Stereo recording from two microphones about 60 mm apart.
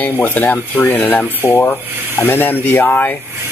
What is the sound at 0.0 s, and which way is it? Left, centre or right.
Speech, left.